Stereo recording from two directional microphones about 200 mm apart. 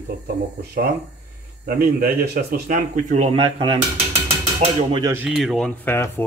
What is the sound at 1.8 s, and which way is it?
Speech, 45° right (ahead or behind).